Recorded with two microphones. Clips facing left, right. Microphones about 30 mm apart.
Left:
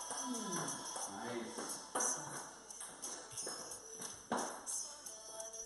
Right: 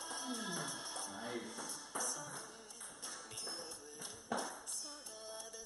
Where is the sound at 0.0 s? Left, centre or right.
Right.